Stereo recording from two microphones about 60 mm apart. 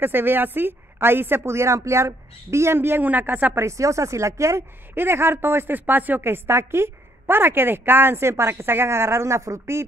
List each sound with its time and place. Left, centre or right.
0.0 s a woman's voice: right
3.0 s speech: right
3.5 s speech: right
4.9 s speech: right